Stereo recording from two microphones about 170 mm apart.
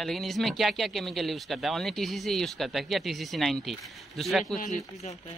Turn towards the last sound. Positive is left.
turn(degrees=50)  # may be behind; listen again after turning